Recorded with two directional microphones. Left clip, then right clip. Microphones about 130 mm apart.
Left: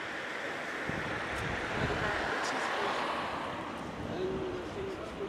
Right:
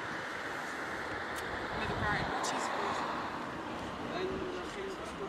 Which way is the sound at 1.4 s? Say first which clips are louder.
Left 3 dB; 30° left (ahead or behind).